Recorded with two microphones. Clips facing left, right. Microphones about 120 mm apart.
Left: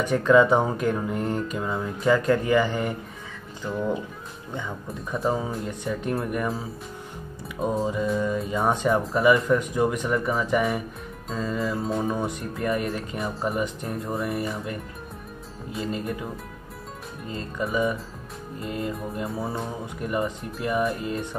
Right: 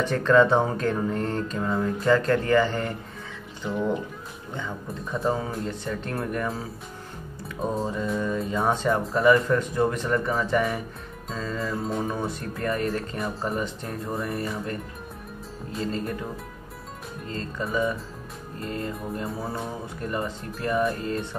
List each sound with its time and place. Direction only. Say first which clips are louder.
0.0 s mantra: left 1 dB; 10° left (ahead or behind)
3.6 s speech: right 1 dB; 5° right (ahead or behind)
5.1 s speech: left 1 dB; 5° left (ahead or behind)
5.7 s mantra: left 3 dB; 10° left (ahead or behind)
11.5 s speech: left 1 dB; centre (ahead or behind)
12.2 s mantra: left 1 dB; 15° left (ahead or behind)
13.3 s speech: left 3 dB; centre (ahead or behind)
17.3 s mantra: left 1 dB; 15° left (ahead or behind)
18.6 s speech: left 1 dB; 5° left (ahead or behind)
20.0 s mantra: left 3 dB; 15° left (ahead or behind)